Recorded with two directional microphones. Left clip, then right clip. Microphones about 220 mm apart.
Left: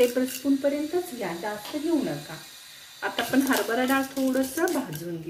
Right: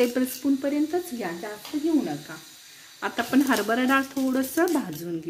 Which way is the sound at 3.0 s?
45° right (ahead or behind).